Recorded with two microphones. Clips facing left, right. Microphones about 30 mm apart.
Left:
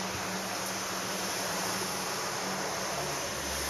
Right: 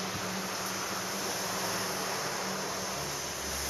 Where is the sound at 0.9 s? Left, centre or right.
Centre.